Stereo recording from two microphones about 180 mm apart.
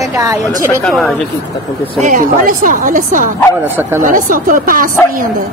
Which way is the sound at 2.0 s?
50° right (ahead or behind).